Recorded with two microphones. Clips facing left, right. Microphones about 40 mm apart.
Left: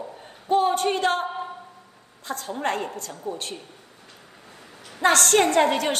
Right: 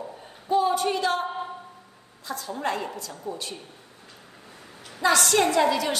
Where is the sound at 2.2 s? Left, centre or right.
Left.